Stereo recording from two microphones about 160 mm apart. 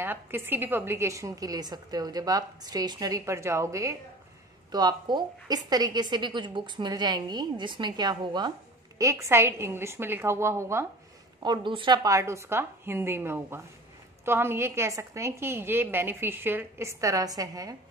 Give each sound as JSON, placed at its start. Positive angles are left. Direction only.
{"t": 0.0, "sound": "a woman's voice", "side_deg": -15}
{"t": 11.4, "sound": "a woman's voice", "side_deg": -30}